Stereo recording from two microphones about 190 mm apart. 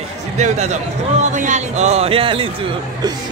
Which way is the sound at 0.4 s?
35° right (ahead or behind).